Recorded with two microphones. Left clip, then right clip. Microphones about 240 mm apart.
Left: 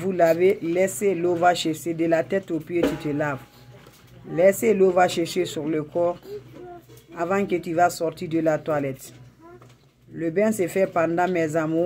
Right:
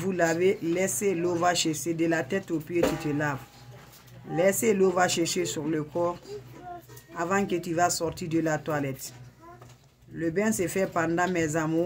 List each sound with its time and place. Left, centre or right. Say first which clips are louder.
0.0 s speech: left 6 dB; centre
7.2 s speech: left 4 dB; centre
10.1 s speech: left 5 dB; centre